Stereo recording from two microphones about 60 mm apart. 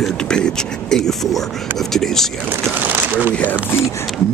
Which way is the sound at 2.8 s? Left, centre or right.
Right.